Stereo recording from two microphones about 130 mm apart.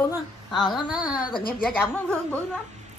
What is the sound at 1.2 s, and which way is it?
Speech, 35° left (ahead or behind).